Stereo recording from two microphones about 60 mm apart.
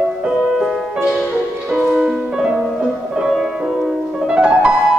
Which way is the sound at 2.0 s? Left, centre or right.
Centre.